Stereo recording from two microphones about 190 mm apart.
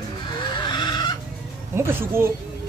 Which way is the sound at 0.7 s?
25° left (ahead or behind).